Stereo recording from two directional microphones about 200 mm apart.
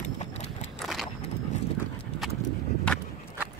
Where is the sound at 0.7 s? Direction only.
Centre (ahead or behind).